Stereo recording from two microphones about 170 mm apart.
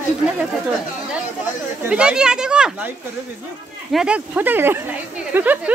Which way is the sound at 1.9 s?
5° right (ahead or behind).